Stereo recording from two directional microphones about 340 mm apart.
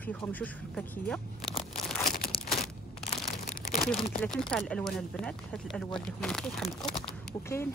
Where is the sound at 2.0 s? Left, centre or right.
Left.